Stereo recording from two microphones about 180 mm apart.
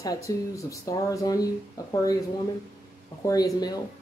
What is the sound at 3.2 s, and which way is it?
Speech, 20° left (ahead or behind).